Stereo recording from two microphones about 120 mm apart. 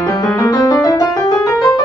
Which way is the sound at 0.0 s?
30° left (ahead or behind).